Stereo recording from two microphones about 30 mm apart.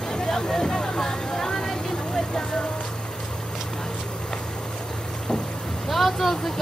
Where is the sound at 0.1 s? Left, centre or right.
Left.